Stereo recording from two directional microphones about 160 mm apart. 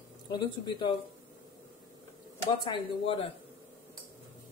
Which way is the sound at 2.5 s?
30° left (ahead or behind).